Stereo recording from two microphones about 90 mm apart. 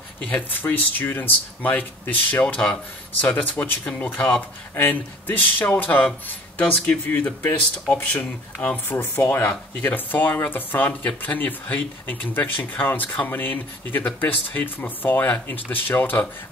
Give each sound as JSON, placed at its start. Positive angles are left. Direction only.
{"t": 0.2, "sound": "speech", "side_deg": 15}